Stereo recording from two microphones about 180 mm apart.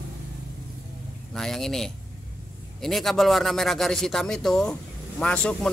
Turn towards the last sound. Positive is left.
turn(degrees=5)  # may be behind; listen again after turning